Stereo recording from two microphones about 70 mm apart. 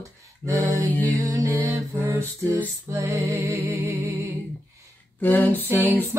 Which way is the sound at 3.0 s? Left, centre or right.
Right.